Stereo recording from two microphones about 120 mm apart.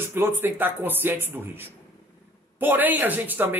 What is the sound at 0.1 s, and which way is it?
Speech, 20° right (ahead or behind).